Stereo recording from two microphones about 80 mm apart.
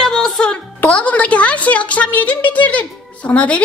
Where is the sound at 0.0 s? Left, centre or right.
Centre.